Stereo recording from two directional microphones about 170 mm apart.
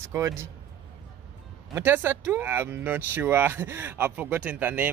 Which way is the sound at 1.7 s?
15° right (ahead or behind).